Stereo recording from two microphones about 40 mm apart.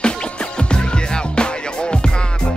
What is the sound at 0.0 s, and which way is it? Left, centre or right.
Music, left.